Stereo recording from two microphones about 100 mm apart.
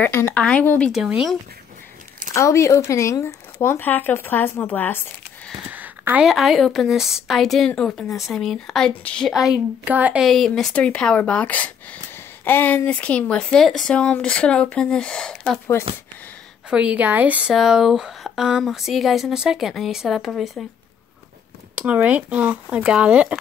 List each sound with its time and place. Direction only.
0.0 s speech: 20° left (ahead or behind)
0.9 s speech: 5° right (ahead or behind)
2.3 s speech: 30° left (ahead or behind)
5.7 s a sound: 15° right (ahead or behind)
6.2 s speech: centre (ahead or behind)
9.3 s speech: 5° right (ahead or behind)
9.9 s speech: 15° right (ahead or behind)
10.2 s speech: centre (ahead or behind)
16.7 s speech: 15° right (ahead or behind)
17.6 s speech: 5° right (ahead or behind)
21.7 s speech: 15° right (ahead or behind)